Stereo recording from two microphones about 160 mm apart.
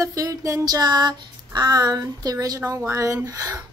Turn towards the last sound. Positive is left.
turn(degrees=-20)  # may be behind; listen again after turning